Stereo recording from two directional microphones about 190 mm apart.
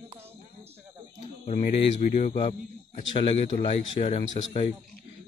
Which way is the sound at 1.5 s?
40° left (ahead or behind).